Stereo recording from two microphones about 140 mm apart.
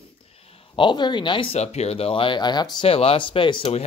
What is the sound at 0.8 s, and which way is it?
Speech, 35° left (ahead or behind).